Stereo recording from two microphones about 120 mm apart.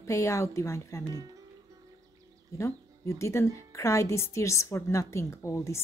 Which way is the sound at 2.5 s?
25° left (ahead or behind).